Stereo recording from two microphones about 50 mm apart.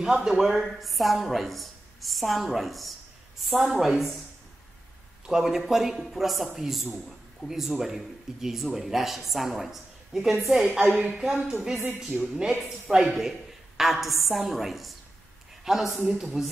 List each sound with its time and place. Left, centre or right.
0.0 s a man's voice: centre
5.2 s a man's voice: centre
10.9 s speech: right
11.1 s a woman's voice: centre
12.4 s a man's voice: centre